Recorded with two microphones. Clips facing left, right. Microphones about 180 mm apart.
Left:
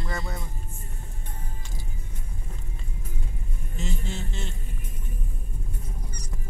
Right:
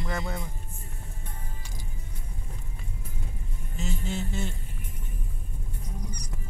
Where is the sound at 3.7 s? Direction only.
5° right (ahead or behind).